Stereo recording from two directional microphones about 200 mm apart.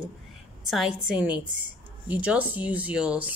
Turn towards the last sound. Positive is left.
turn(degrees=-5)  # may be behind; listen again after turning